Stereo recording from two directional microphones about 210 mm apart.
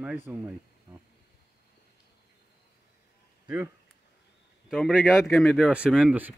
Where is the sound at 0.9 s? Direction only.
20° right (ahead or behind).